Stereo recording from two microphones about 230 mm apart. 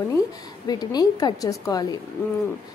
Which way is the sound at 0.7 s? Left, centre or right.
Centre.